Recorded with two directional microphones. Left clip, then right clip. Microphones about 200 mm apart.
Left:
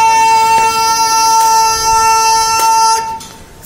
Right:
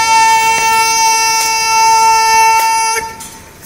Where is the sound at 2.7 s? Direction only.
55° left (ahead or behind).